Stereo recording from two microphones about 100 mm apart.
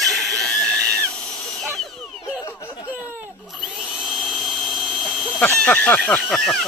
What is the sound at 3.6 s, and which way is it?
Drill, centre (ahead or behind).